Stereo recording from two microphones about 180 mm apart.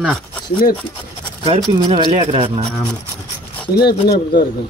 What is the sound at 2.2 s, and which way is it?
Speech, 40° right (ahead or behind).